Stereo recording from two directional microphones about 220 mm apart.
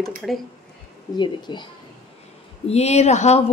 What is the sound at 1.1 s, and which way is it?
Speech, 20° left (ahead or behind).